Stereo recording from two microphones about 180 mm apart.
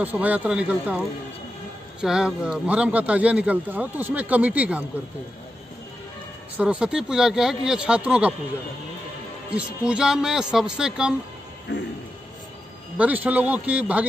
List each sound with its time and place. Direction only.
0.0 s a man's voice: 10° right (ahead or behind)
6.5 s speech: 10° right (ahead or behind)
9.5 s speech: 5° right (ahead or behind)
11.7 s a man's voice: 75° left (ahead or behind)
12.9 s a man's voice: 10° right (ahead or behind)